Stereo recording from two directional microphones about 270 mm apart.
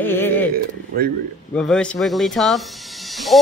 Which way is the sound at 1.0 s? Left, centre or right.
Right.